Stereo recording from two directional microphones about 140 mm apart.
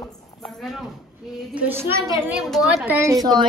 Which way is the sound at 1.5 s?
15° right (ahead or behind).